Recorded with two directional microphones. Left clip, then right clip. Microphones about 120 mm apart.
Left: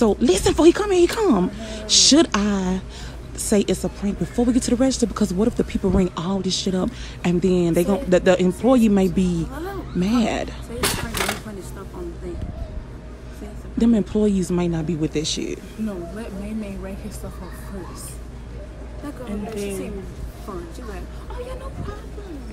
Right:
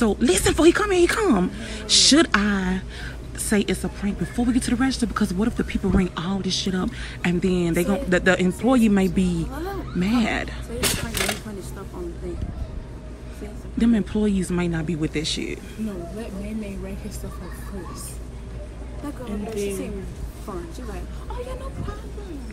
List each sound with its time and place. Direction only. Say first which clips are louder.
0.0 s speech: left 2 dB; 25° left (ahead or behind)
9.5 s speech: even; 25° right (ahead or behind)
9.9 s speech: left 2 dB; 30° left (ahead or behind)
10.8 s a sound: left 1 dB; 65° left (ahead or behind)
13.7 s speech: left 3 dB; 35° left (ahead or behind)